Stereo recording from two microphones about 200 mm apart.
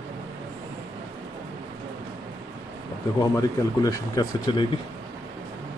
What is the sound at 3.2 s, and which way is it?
Speech, 20° left (ahead or behind).